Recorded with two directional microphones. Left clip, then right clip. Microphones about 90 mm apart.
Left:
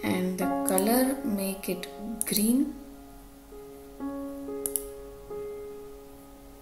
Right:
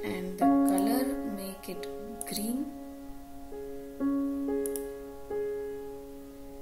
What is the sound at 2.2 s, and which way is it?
Speech, centre (ahead or behind).